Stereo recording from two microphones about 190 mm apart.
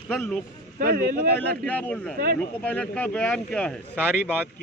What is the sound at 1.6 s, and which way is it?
Speech, 10° left (ahead or behind).